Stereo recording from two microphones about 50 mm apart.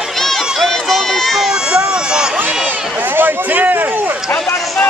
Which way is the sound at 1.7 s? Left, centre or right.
Centre.